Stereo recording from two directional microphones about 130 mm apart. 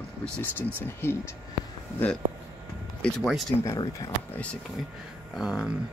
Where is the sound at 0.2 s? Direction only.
15° left (ahead or behind).